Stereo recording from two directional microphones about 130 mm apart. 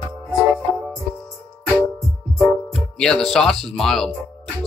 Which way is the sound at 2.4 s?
5° left (ahead or behind).